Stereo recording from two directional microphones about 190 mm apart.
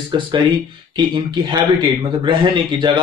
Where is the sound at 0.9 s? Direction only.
25° right (ahead or behind).